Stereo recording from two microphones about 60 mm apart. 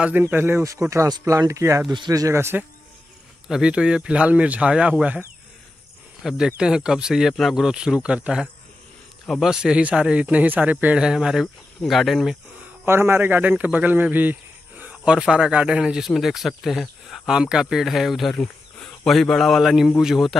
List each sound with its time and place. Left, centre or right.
0.3 s a man's voice: right
0.7 s speech: right
1.0 s speech: right
2.0 s speech: right
2.5 s speech: right
3.4 s speech: centre
6.3 s speech: centre
11.0 s speech: centre
11.4 s speech: centre
12.8 s a man's voice: right
14.0 s a sound: right
15.0 s speech: centre
18.3 s wild animals: centre
19.3 s speech: centre